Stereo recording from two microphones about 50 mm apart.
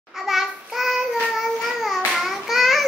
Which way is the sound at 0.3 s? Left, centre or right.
Centre.